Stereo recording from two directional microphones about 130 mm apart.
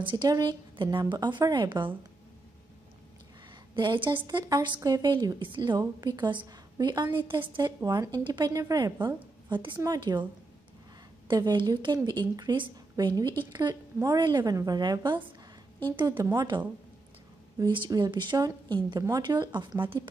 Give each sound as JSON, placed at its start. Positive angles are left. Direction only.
{"t": 0.0, "sound": "a woman's voice", "side_deg": -40}
{"t": 3.7, "sound": "a woman's voice", "side_deg": -40}
{"t": 11.2, "sound": "a woman's voice", "side_deg": -35}